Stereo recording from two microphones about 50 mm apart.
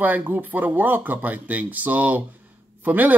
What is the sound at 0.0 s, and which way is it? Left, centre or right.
Speech, right.